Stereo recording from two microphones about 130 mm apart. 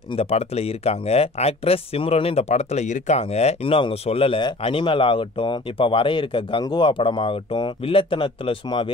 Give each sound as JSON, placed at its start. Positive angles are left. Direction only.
{"t": 0.1, "sound": "speech", "side_deg": 50}